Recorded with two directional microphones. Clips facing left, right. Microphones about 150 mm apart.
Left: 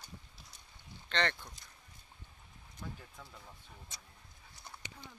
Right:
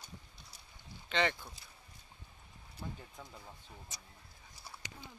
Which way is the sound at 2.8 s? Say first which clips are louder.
Right 1 dB; 20° right (ahead or behind).